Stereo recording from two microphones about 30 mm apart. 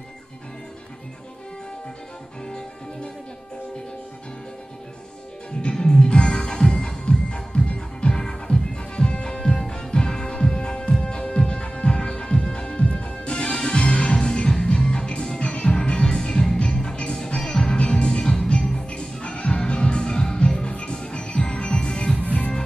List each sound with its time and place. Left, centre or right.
2.4 s music: left
5.6 s music: left
6.0 s music: left
22.2 s music: left